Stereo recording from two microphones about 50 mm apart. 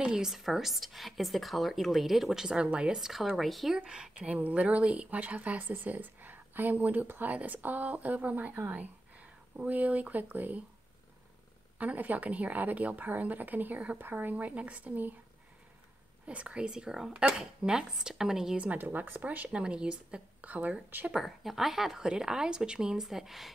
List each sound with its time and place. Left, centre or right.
0.0 s speech: centre
3.0 s speech: centre
3.7 s a woman's voice: centre
4.3 s a woman's voice: right
11.8 s a woman's voice: right
16.3 s a woman's voice: right
18.8 s a woman's voice: right
19.5 s speech: centre
20.4 s a woman's voice: right
21.1 s a woman's voice: centre
23.0 s speech: centre